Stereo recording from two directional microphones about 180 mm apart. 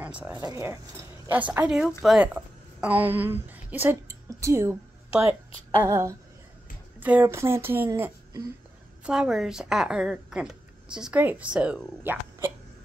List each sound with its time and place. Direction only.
0.0 s speech: 5° right (ahead or behind)
0.4 s a woman's voice: 15° right (ahead or behind)
9.0 s speech: 5° right (ahead or behind)